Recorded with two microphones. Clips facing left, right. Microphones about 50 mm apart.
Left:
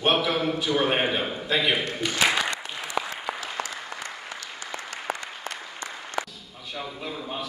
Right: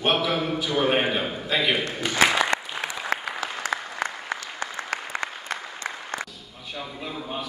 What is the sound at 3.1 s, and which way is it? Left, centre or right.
Applause, right.